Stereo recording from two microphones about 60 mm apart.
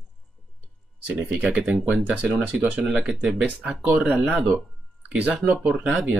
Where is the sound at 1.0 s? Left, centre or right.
Right.